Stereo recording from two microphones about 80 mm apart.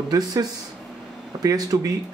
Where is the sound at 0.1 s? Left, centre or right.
Right.